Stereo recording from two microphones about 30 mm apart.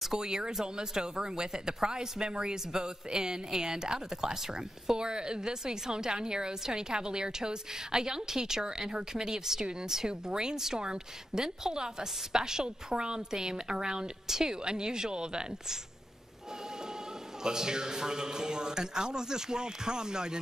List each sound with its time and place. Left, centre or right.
0.2 s speech: right
14.2 s speech: centre
14.5 s speech: right
17.4 s speech: right